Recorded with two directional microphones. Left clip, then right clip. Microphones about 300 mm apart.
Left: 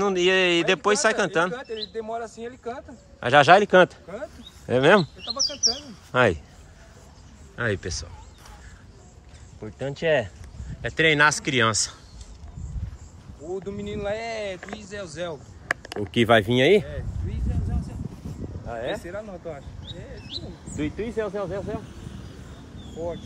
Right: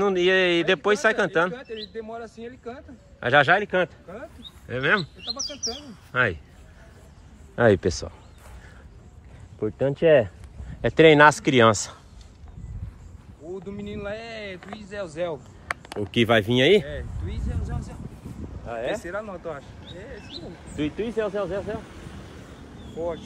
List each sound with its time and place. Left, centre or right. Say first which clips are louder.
0.0 s speech: even; centre
2.0 s speech: left 4 dB; left
3.2 s a man's voice: left 3 dB; centre; by 4.3 s left
4.6 s a man's voice: left 5 dB; centre
7.5 s speech: right 8 dB; centre
9.7 s speech: right 5 dB; centre
13.7 s speech: left 4 dB; left
15.2 s speech: right 3 dB; right
15.9 s speech: left 1 dB; centre
16.8 s speech: right 2 dB; centre
18.7 s speech: right 2 dB; centre
20.7 s speech: right 1 dB; centre
22.9 s speech: right 2 dB; centre